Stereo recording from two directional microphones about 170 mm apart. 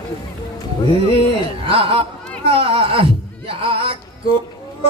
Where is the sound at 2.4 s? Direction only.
30° right (ahead or behind).